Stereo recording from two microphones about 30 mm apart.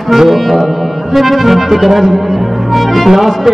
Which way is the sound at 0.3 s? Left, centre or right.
Centre.